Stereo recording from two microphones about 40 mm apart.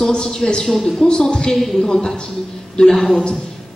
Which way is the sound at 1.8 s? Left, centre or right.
Centre.